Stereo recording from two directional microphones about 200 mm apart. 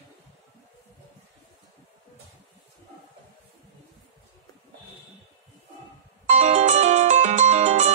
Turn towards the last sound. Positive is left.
turn(degrees=-35)  # may be behind; listen again after turning